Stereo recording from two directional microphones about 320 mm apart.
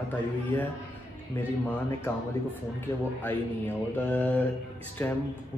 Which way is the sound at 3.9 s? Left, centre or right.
Centre.